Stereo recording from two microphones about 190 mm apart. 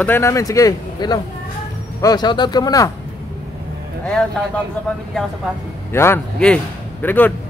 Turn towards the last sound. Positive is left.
turn(degrees=10)  # may be behind; listen again after turning